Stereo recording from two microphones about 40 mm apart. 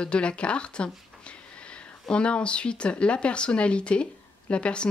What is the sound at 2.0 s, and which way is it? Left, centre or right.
Speech, left.